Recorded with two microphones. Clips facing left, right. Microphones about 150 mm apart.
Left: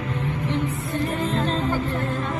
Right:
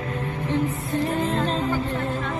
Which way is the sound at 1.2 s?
40° right (ahead or behind).